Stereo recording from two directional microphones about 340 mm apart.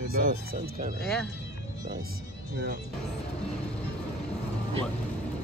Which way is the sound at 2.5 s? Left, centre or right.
Right.